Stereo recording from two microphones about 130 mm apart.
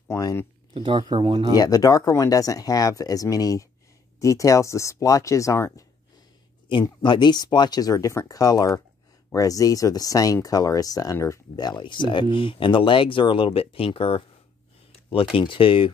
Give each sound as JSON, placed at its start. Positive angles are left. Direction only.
{"t": 0.1, "sound": "speech", "side_deg": 25}
{"t": 0.7, "sound": "speech", "side_deg": -40}
{"t": 1.5, "sound": "speech", "side_deg": 30}
{"t": 6.7, "sound": "speech", "side_deg": 40}
{"t": 15.3, "sound": "speech", "side_deg": 40}